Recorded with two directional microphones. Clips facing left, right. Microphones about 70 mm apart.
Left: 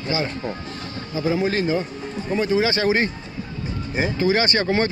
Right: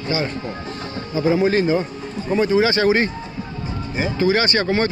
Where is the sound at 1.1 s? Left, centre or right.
Right.